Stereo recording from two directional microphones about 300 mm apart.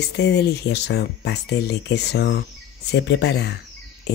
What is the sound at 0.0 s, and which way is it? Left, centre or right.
Speech, left.